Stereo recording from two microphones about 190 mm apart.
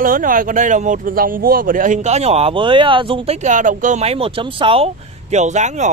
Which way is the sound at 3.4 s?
40° right (ahead or behind).